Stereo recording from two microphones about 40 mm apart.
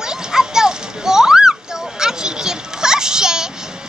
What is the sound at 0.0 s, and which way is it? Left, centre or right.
Children playing, centre.